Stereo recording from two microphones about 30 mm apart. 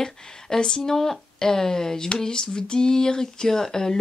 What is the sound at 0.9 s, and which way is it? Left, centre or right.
Speech, centre.